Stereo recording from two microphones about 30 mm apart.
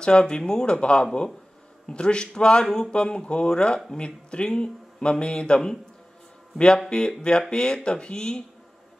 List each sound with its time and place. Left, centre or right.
0.0 s a man's voice: left
6.9 s speech: left